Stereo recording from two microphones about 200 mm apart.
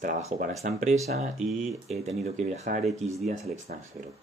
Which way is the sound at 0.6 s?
40° right (ahead or behind).